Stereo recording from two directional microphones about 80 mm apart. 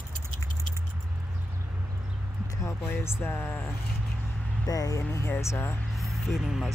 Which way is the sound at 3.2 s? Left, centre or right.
Left.